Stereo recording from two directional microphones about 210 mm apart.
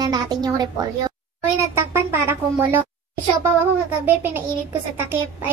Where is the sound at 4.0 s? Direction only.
10° right (ahead or behind).